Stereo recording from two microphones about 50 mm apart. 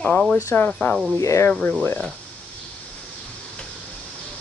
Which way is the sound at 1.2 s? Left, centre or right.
Left.